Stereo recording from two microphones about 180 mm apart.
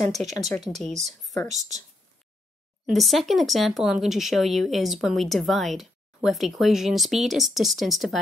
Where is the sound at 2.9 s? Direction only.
Centre (ahead or behind).